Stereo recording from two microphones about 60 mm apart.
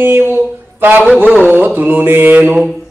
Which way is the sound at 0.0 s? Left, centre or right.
Right.